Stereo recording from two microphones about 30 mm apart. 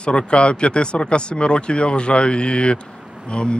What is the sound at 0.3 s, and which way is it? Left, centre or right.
A man's voice, left.